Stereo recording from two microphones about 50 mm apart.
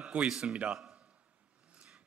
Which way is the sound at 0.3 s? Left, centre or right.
Centre.